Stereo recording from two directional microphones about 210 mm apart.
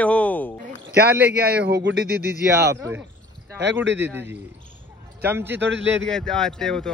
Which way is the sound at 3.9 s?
10° right (ahead or behind).